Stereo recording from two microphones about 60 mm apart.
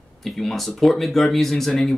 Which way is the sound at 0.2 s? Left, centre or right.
Centre.